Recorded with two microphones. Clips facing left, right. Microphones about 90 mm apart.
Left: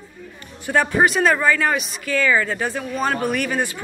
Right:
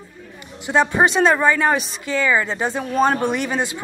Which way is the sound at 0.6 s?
20° right (ahead or behind).